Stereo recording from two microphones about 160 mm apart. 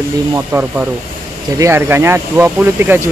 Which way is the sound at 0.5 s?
10° right (ahead or behind).